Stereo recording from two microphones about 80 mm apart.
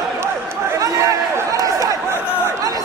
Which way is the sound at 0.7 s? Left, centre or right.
Right.